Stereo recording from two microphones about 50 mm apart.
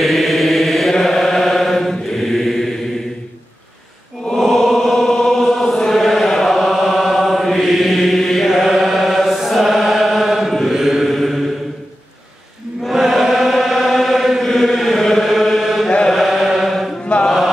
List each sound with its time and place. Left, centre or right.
0.0 s chant: centre
4.3 s chant: centre
12.8 s chant: centre
17.0 s mantra: left